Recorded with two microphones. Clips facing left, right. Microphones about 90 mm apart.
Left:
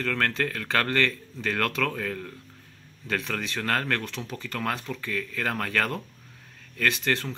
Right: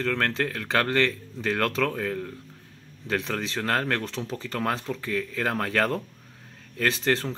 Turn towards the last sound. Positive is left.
turn(degrees=-30)  # may be behind; listen again after turning